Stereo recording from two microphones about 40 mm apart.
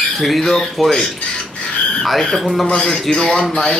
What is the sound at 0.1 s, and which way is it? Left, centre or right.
Speech, centre.